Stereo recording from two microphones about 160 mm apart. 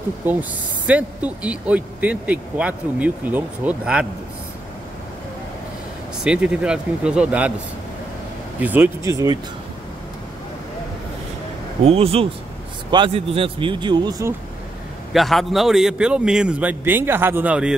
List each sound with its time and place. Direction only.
0.3 s speech: 10° right (ahead or behind)
6.2 s speech: 5° right (ahead or behind)
8.5 s speech: 10° right (ahead or behind)
11.8 s speech: 40° right (ahead or behind)
15.1 s speech: centre (ahead or behind)